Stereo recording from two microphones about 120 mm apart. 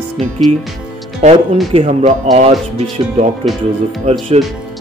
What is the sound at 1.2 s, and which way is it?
Speech, 60° right (ahead or behind).